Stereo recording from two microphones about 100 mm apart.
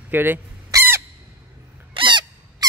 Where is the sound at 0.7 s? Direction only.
25° right (ahead or behind).